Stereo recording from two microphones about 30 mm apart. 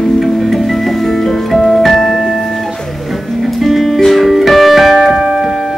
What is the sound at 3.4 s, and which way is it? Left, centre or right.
Music, centre.